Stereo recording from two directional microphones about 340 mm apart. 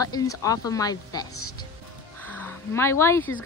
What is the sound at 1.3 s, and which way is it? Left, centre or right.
Speech, left.